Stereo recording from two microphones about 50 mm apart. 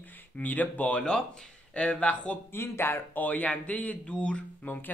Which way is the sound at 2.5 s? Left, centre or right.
Left.